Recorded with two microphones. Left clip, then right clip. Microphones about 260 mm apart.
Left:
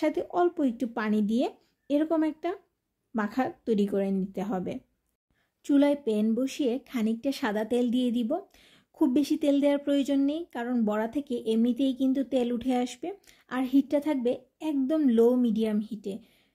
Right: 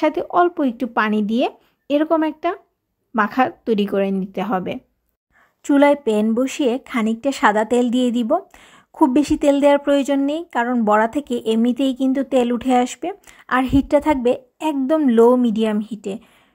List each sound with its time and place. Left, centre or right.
0.0 s speech: centre